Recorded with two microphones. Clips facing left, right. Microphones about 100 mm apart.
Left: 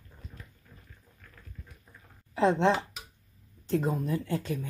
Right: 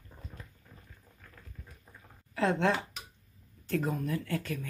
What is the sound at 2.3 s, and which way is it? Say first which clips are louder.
Speech: left 4 dB; 20° left (ahead or behind).